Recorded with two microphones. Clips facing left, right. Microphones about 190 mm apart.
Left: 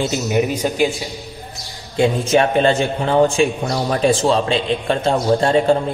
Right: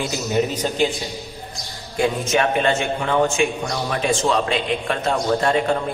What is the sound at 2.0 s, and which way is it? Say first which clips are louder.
A man's voice: left 5 dB; 30° left (ahead or behind).